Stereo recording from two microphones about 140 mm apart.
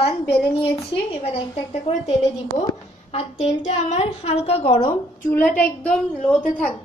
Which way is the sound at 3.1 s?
50° left (ahead or behind).